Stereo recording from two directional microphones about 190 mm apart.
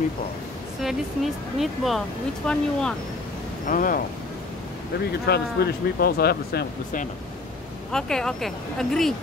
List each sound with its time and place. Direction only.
0.8 s speech: centre (ahead or behind)
3.6 s speech: 45° left (ahead or behind)
5.2 s speech: 55° left (ahead or behind)
7.9 s speech: 5° left (ahead or behind)